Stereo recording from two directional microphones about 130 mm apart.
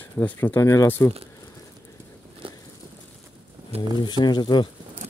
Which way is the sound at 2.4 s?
40° right (ahead or behind).